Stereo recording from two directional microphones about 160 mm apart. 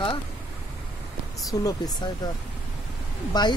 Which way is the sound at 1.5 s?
25° left (ahead or behind).